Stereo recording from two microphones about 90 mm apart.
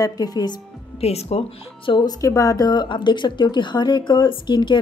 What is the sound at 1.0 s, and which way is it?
Speech, 90° left.